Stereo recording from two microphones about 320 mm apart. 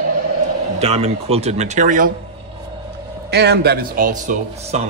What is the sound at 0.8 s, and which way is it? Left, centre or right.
Speech, centre.